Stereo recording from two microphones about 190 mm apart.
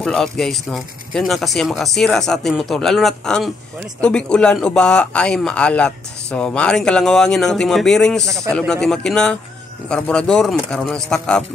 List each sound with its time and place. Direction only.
0.0 s a man's voice: centre (ahead or behind)